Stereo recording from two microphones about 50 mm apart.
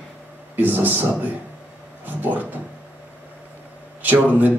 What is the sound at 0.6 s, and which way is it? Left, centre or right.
Speech, right.